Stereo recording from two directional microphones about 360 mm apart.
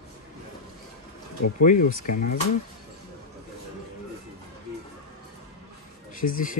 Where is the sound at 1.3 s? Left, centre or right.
Left.